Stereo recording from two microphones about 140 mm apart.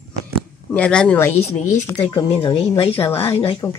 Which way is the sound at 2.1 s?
35° left (ahead or behind).